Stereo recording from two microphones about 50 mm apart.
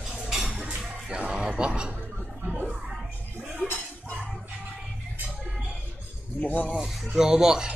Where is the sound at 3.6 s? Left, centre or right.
Left.